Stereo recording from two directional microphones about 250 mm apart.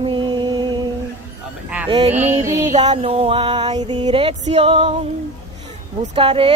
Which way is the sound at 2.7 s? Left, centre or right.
Right.